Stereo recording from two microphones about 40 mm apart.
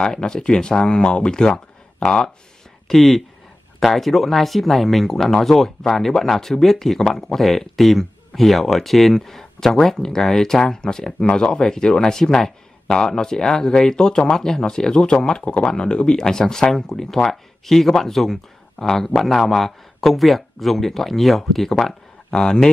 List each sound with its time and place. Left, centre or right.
0.0 s speech: centre
2.9 s speech: centre
22.3 s speech: centre